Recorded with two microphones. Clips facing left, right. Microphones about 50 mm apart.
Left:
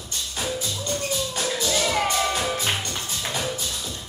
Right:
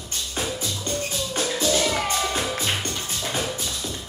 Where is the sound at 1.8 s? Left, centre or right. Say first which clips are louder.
Left 1 dB; centre.